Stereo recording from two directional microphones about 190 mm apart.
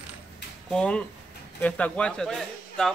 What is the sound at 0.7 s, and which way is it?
Speech, 5° left (ahead or behind).